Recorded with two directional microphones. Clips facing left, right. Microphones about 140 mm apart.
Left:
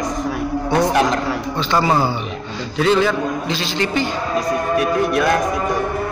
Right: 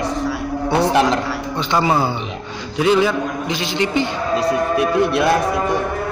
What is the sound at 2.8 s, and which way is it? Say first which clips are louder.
A man's voice: right 1 dB; 10° right (ahead or behind).